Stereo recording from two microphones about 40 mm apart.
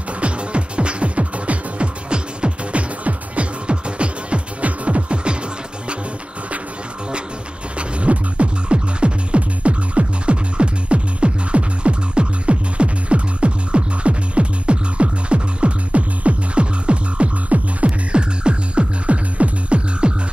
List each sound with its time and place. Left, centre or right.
0.2 s music: right
3.0 s music: right
7.7 s music: right